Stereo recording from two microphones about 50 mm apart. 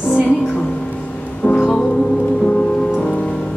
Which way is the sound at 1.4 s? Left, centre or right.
Left.